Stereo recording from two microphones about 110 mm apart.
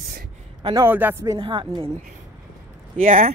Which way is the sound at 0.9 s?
15° right (ahead or behind).